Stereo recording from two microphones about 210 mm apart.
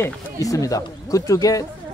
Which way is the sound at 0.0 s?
15° left (ahead or behind).